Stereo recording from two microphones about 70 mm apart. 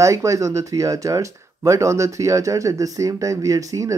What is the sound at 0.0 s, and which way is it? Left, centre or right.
Speech, right.